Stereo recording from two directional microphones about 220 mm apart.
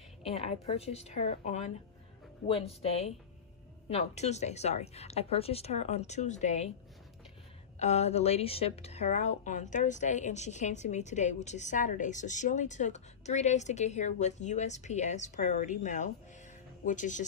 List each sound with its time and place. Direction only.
0.2 s a woman's voice: 30° left (ahead or behind)
7.8 s speech: 30° left (ahead or behind)